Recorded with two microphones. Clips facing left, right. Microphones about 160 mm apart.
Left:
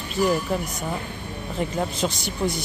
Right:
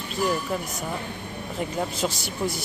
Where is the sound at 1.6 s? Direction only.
5° right (ahead or behind).